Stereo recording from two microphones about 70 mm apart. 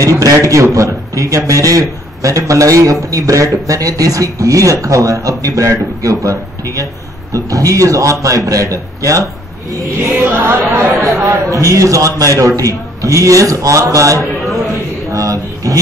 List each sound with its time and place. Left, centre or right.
0.0 s speech: right
10.2 s speech: right
11.2 s speech: right
15.1 s a sound: right